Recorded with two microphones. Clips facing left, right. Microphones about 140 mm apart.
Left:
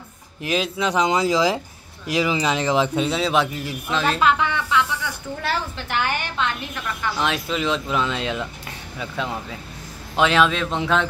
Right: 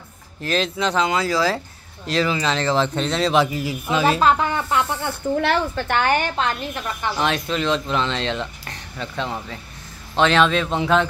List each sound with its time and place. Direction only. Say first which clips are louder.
0.4 s speech: right 1 dB; 10° left (ahead or behind)
1.0 s a woman's voice: left 4 dB; 20° left (ahead or behind); by 4.2 s 5° right (ahead or behind)
4.2 s speech: right 2 dB; 40° right (ahead or behind)
5.0 s a woman's voice: right 7 dB; 55° right (ahead or behind)
6.3 s a woman's voice: right 2 dB; 35° right (ahead or behind)
7.2 s speech: right 2 dB; centre (ahead or behind)